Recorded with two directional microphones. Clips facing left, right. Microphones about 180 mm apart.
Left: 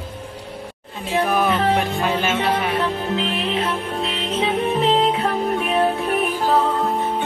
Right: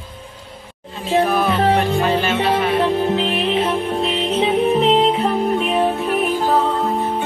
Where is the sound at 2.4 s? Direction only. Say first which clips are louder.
Right 4 dB; 35° right (ahead or behind).